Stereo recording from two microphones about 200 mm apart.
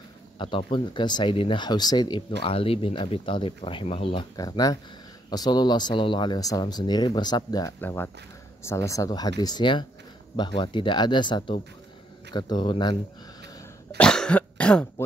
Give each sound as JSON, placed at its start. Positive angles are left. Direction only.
{"t": 0.4, "sound": "speech", "side_deg": 25}
{"t": 7.8, "sound": "speech", "side_deg": 10}
{"t": 13.6, "sound": "throat clearing", "side_deg": 5}